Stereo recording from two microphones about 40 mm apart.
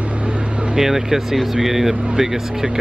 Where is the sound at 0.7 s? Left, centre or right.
Centre.